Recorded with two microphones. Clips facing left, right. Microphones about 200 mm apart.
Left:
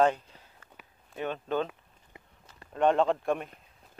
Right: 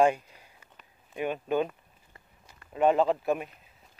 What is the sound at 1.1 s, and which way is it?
Speech, 10° right (ahead or behind).